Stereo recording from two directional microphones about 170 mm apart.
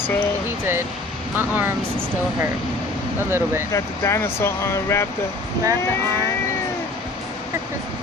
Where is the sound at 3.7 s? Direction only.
15° left (ahead or behind).